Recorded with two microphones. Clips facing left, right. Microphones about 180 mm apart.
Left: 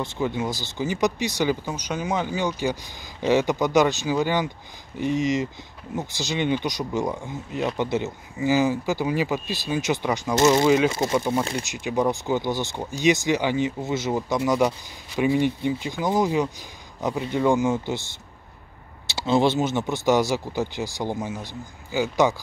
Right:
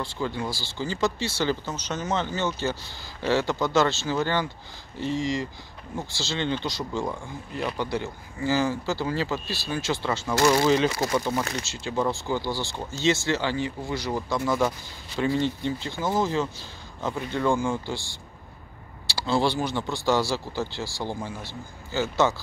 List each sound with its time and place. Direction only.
0.0 s speech: 20° left (ahead or behind)